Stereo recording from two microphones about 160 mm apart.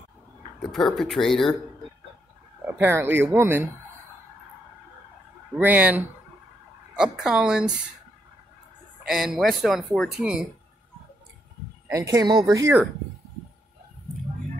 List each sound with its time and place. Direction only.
0.6 s speech: centre (ahead or behind)
2.6 s speech: 10° right (ahead or behind)
5.6 s speech: 10° right (ahead or behind)
9.0 s speech: centre (ahead or behind)
11.9 s speech: 20° right (ahead or behind)